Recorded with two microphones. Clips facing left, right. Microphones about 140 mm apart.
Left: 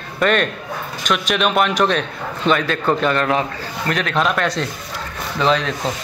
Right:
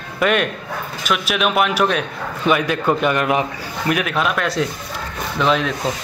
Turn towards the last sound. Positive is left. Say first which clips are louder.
# even
turn(degrees=-5)  # may be behind; listen again after turning